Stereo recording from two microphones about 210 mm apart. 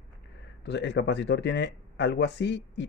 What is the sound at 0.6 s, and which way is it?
Speech, 55° left (ahead or behind).